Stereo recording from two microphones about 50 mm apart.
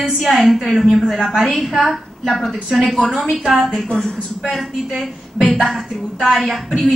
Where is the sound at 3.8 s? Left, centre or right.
Centre.